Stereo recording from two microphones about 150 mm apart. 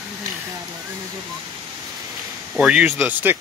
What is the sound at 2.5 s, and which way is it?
Speech, 5° right (ahead or behind).